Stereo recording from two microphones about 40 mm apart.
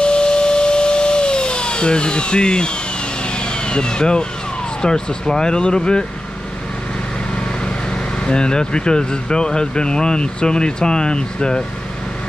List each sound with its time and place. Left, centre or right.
0.0 s tools: left
3.3 s vehicle: left
4.8 s speech: centre
7.3 s speech: left